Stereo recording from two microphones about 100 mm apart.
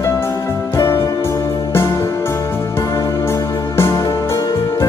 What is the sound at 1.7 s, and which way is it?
Music, 30° left (ahead or behind).